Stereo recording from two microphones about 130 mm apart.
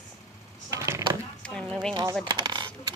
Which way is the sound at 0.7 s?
25° right (ahead or behind).